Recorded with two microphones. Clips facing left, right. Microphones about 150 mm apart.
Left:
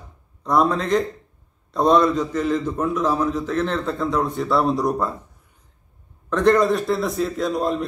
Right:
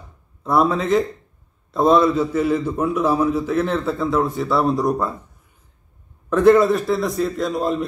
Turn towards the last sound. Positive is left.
turn(degrees=0)  # may be behind; listen again after turning